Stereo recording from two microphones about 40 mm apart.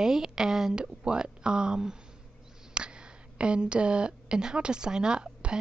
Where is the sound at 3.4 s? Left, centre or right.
Right.